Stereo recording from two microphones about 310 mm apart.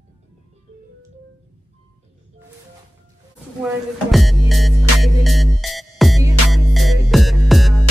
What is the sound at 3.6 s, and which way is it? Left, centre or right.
Music, centre.